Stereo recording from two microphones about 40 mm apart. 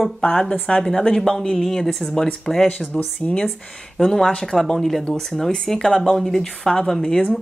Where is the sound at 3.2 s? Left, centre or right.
Centre.